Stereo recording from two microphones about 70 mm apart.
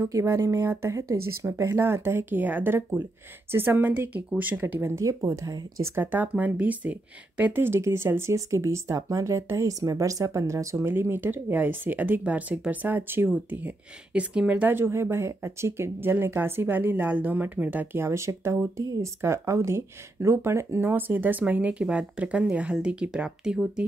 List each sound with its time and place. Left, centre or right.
0.1 s speech: right
4.9 s speech: right
5.9 s speech: right
8.4 s speech: right
10.9 s speech: right; by 14.7 s centre
14.7 s speech: right; by 23.9 s centre